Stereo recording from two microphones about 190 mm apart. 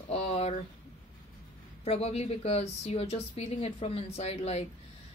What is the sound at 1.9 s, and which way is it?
A woman's voice, 30° left (ahead or behind).